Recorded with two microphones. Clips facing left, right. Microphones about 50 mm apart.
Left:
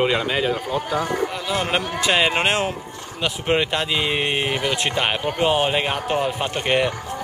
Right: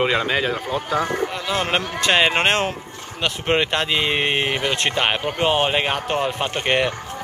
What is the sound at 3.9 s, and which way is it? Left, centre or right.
Speech, right.